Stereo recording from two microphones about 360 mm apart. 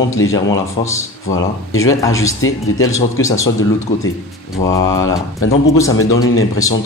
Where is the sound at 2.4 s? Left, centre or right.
Left.